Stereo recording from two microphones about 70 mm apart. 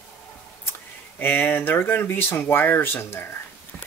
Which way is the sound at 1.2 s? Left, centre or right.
Left.